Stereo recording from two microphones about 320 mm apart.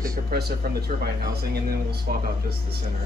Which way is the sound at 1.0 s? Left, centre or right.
Right.